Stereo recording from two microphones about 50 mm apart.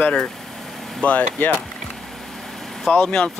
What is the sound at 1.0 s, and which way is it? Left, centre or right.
Speech, left.